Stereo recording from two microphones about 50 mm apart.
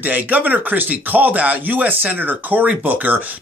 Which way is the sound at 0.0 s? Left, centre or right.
Right.